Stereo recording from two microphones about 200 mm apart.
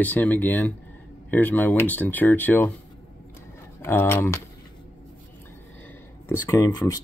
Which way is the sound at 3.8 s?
10° left (ahead or behind).